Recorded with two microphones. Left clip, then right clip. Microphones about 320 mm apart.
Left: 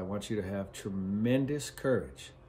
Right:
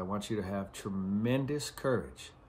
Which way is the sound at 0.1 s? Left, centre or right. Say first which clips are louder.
Left 1 dB; centre.